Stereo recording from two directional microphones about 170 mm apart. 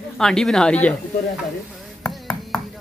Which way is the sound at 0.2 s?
5° left (ahead or behind).